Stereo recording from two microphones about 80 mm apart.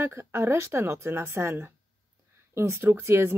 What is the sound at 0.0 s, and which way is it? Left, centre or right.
Speech, right.